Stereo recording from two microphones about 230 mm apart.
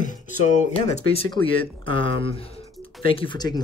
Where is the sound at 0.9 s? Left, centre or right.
Left.